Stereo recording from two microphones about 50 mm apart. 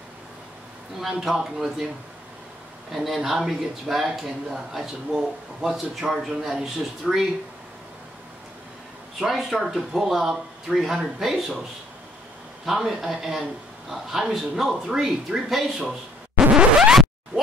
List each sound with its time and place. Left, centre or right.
1.0 s speech: centre
2.9 s speech: centre
9.2 s speech: centre
12.6 s speech: centre
16.5 s scratch: centre